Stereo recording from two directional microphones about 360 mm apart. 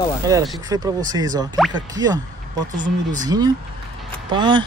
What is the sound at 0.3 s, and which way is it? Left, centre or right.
A man's voice, centre.